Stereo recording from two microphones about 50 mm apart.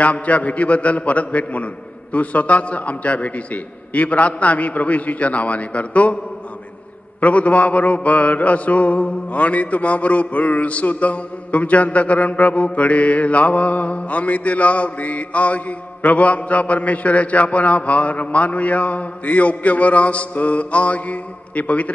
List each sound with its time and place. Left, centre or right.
0.0 s mantra: left
7.2 s mantra: left